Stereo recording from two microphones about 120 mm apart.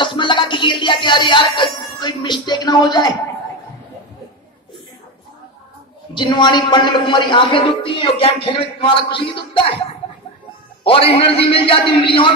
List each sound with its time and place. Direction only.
0.0 s music: 40° left (ahead or behind)
6.1 s speech: 40° left (ahead or behind)
10.8 s speech: 50° left (ahead or behind)